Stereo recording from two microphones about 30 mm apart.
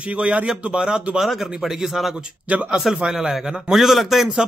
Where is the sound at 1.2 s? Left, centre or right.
Centre.